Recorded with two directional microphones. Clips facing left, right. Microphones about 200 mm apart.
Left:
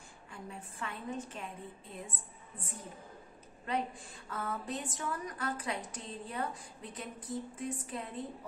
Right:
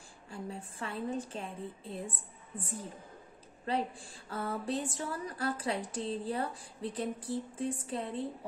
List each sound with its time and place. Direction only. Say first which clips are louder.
0.3 s a woman's voice: right 5 dB; 30° right (ahead or behind)
3.6 s a woman's voice: right 2 dB; 30° right (ahead or behind)